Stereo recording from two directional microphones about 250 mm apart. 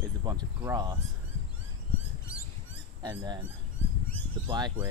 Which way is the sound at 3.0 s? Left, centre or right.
Centre.